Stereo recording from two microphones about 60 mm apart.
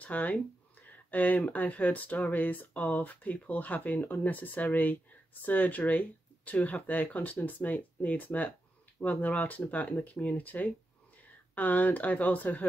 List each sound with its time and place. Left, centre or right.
0.0 s speech: left